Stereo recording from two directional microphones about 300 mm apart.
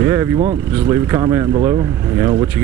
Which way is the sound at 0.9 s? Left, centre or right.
Centre.